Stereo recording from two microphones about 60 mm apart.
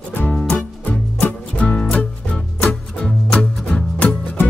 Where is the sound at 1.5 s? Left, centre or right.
Centre.